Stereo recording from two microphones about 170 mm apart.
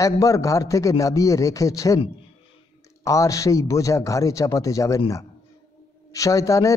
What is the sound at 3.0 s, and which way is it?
A man's voice, 20° left (ahead or behind).